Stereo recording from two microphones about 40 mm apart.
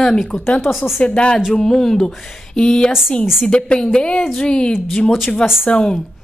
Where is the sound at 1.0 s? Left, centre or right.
Left.